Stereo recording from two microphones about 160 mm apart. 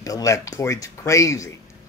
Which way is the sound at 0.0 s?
20° left (ahead or behind).